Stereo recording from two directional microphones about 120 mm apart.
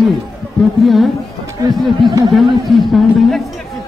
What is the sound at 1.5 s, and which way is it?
Chatter, 30° right (ahead or behind).